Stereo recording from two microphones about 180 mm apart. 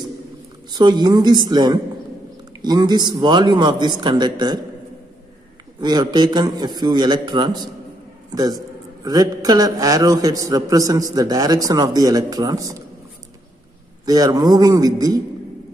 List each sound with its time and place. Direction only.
0.7 s a man's voice: 25° right (ahead or behind)
5.8 s a man's voice: 25° right (ahead or behind)
14.0 s a man's voice: 20° right (ahead or behind)